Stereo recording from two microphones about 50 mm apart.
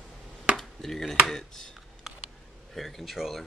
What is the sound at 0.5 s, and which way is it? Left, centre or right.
Chop, centre.